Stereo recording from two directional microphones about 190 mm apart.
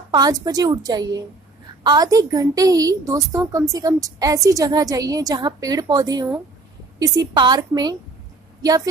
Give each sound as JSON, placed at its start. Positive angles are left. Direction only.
{"t": 0.1, "sound": "a woman's voice", "side_deg": -20}